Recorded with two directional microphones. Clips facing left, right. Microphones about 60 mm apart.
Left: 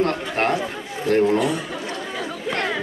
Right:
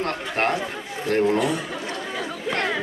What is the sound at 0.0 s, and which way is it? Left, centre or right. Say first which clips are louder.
Chatter: left 3 dB; right.